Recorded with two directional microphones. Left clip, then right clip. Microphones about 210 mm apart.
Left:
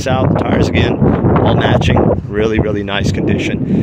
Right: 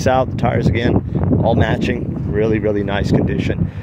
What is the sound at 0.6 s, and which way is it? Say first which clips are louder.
Speech: left 4 dB; centre (ahead or behind).